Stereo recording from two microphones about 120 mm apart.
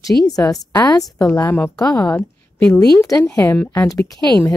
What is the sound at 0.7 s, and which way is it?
Speech, 30° left (ahead or behind).